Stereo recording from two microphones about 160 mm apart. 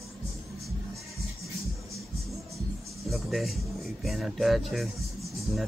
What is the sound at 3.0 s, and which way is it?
Speech, centre (ahead or behind).